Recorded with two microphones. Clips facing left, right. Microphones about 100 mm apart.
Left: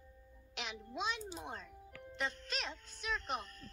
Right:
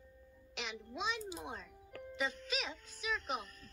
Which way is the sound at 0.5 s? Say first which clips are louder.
Even; centre (ahead or behind).